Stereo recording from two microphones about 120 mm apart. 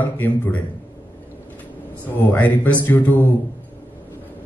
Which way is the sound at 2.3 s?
15° left (ahead or behind).